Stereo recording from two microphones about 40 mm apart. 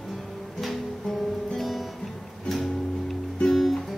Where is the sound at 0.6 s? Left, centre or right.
Centre.